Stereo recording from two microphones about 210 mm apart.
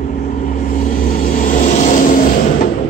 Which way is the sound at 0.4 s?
40° left (ahead or behind).